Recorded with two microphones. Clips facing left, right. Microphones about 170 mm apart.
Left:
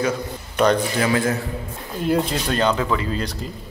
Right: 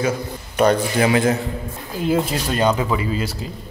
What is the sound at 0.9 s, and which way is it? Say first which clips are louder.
Speech: right 3 dB; 20° right (ahead or behind).